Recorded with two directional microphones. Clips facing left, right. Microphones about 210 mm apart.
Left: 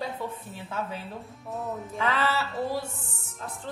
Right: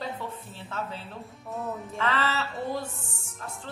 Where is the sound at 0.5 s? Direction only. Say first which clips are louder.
Left 2 dB; 15° left (ahead or behind).